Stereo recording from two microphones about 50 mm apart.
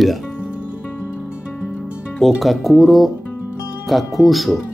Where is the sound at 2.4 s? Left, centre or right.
Centre.